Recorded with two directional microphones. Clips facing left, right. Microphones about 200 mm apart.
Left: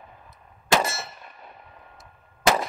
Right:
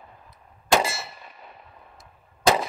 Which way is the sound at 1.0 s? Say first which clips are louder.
Even; 5° right (ahead or behind).